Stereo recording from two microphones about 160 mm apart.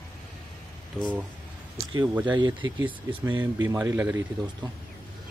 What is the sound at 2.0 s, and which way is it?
Speech, 10° right (ahead or behind).